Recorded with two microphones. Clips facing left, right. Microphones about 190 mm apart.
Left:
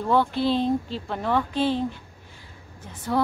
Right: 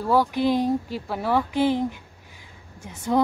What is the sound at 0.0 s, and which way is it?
Speech, 10° right (ahead or behind).